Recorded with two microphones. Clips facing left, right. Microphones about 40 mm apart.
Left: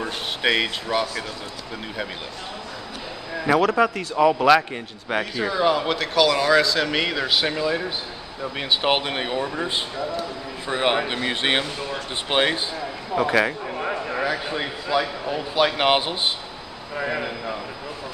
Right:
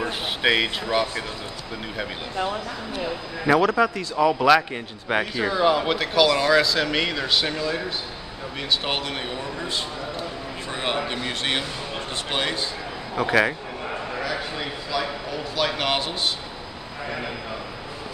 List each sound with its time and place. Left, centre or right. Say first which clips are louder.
0.4 s speech: even; centre
3.4 s speech: even; centre
3.8 s speech: left 2 dB; centre
4.4 s speech: left 1 dB; centre
8.6 s a man's voice: left 4 dB; left
13.1 s speech: even; centre
13.7 s a sound: left 4 dB; left
14.3 s a man's voice: left 2 dB; centre